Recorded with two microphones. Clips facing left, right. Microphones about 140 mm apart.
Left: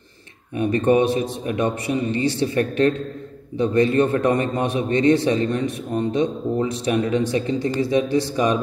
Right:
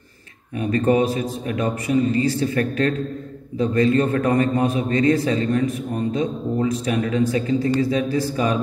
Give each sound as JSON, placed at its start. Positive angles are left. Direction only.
{"t": 0.6, "sound": "a man's voice", "side_deg": 25}